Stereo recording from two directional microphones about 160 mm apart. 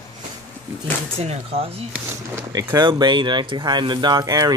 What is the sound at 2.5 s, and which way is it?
Speech, 25° right (ahead or behind).